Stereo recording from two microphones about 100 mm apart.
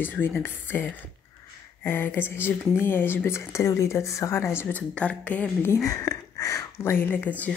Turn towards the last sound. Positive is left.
turn(degrees=15)  # may be behind; listen again after turning